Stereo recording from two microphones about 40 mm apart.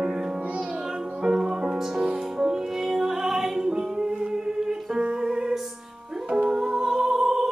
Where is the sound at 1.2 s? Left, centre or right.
Centre.